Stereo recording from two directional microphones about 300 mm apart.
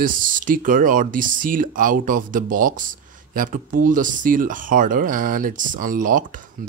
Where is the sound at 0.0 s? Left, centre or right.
Right.